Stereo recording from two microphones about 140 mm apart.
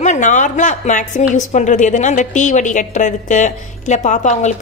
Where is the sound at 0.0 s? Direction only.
60° left (ahead or behind).